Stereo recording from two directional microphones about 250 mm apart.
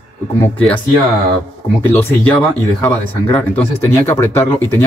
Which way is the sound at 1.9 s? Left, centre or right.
Centre.